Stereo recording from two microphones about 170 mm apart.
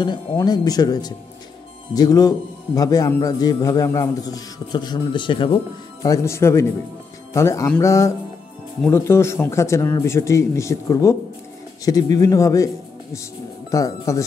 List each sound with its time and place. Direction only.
0.0 s a man's voice: 25° left (ahead or behind)
6.0 s a man's voice: 20° left (ahead or behind)